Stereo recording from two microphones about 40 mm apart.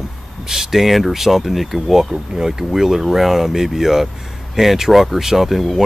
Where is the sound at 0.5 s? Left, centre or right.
Centre.